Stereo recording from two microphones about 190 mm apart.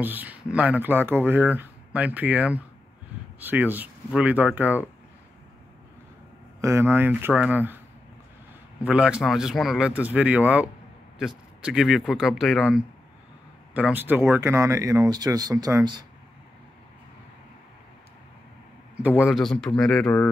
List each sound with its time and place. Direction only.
0.0 s speech: 10° right (ahead or behind)
6.6 s speech: 15° right (ahead or behind)
8.8 s speech: 5° right (ahead or behind)
13.7 s speech: 10° right (ahead or behind)
19.0 s speech: 5° right (ahead or behind)